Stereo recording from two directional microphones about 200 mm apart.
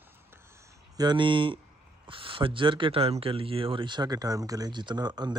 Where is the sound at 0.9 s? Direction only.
20° right (ahead or behind).